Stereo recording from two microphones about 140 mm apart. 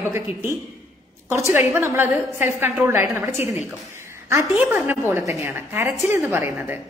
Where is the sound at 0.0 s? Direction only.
15° right (ahead or behind).